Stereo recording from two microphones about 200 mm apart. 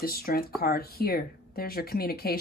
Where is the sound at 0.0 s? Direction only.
50° left (ahead or behind).